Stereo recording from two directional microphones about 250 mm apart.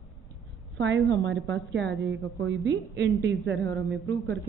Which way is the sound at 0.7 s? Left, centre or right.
Right.